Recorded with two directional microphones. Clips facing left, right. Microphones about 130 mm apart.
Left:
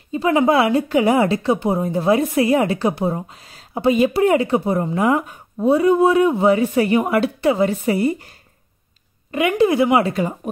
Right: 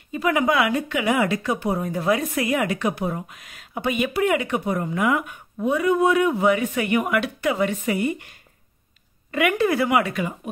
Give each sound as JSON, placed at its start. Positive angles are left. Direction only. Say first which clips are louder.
{"t": 0.1, "sound": "a woman's voice", "louder": "left 5 dB", "side_deg": 30}
{"t": 9.3, "sound": "speech", "louder": "left 4 dB", "side_deg": 25}